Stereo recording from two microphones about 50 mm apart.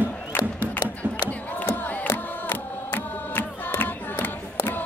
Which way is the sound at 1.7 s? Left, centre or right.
Left.